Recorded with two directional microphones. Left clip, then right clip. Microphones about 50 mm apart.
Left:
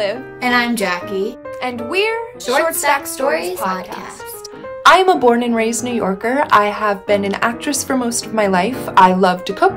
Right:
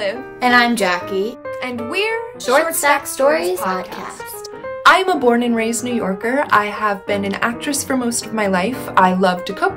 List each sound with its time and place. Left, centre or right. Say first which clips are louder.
0.4 s a child's voice: right 3 dB; right
1.6 s a woman's voice: left 3 dB; left
2.8 s a woman's voice: right 2 dB; right
4.8 s a woman's voice: left 2 dB; left